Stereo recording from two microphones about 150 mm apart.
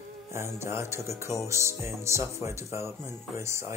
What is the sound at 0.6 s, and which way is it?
Speech, 15° right (ahead or behind).